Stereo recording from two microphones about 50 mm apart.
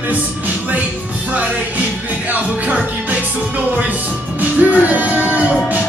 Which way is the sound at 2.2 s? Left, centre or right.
Right.